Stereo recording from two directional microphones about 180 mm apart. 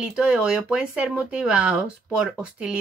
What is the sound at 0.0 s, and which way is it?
Speech, 5° right (ahead or behind).